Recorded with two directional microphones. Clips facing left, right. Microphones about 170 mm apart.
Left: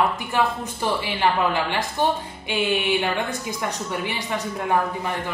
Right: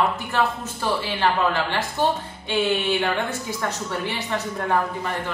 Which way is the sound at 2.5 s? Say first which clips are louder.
Right 1 dB; 15° left (ahead or behind).